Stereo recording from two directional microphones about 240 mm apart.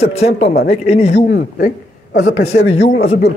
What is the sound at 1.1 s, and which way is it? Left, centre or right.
Speech, left.